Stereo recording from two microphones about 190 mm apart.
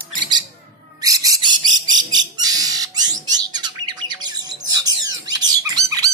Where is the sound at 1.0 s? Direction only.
20° right (ahead or behind).